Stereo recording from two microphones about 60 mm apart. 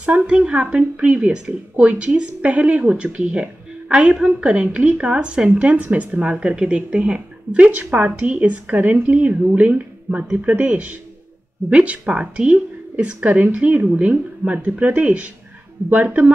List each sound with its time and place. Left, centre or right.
0.0 s a woman's voice: right